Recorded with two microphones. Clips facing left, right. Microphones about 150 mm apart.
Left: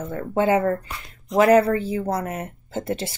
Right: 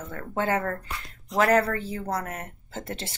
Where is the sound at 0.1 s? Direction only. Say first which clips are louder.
Left 7 dB; 15° left (ahead or behind).